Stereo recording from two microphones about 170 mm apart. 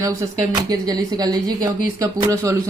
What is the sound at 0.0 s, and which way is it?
Speech, 20° right (ahead or behind).